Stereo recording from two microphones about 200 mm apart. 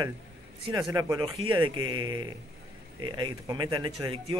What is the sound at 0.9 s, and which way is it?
A man's voice, 20° right (ahead or behind).